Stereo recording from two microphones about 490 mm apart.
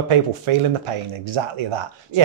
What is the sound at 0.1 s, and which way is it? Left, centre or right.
Speech, right.